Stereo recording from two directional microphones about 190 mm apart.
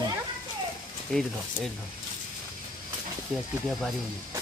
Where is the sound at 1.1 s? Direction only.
Centre (ahead or behind).